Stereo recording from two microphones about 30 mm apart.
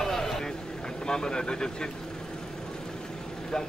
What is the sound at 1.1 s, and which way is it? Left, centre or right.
Vehicle, left.